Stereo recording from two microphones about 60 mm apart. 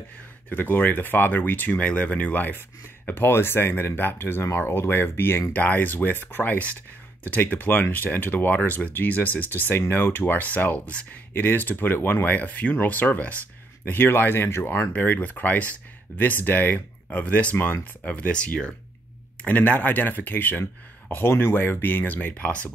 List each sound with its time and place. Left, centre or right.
0.5 s speech: left
13.8 s speech: left
21.1 s speech: left